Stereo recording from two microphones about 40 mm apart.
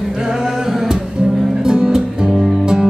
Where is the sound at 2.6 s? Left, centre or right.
Centre.